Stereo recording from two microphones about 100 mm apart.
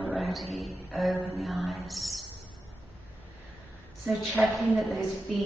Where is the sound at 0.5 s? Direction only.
Centre (ahead or behind).